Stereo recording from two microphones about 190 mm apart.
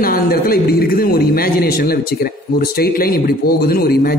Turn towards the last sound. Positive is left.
turn(degrees=55)  # may be behind; listen again after turning